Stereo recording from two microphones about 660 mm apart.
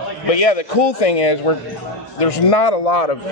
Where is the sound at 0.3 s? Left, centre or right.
Left.